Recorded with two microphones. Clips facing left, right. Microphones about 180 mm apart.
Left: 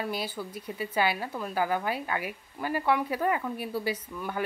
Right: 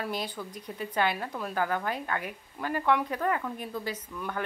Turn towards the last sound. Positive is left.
turn(degrees=10)  # may be behind; listen again after turning